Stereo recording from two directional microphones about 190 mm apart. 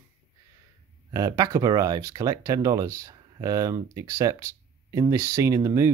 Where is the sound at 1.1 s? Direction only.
20° right (ahead or behind).